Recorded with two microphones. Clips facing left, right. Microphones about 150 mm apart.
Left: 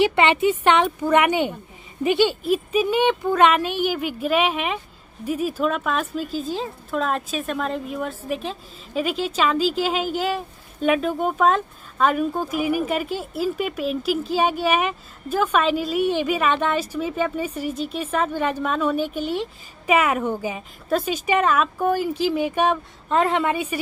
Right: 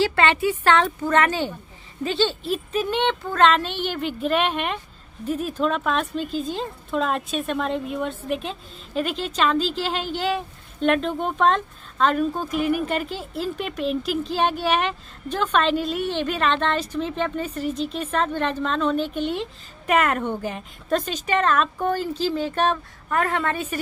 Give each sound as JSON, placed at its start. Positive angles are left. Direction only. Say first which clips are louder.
{"t": 0.0, "sound": "a woman's voice", "louder": "left 2 dB", "side_deg": 20}